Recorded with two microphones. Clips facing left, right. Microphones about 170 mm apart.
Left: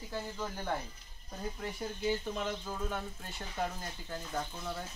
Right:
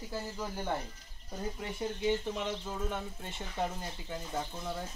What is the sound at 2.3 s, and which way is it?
Speech, 15° right (ahead or behind).